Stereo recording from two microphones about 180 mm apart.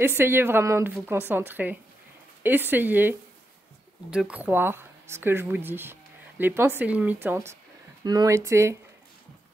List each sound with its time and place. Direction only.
0.0 s speech: 15° right (ahead or behind)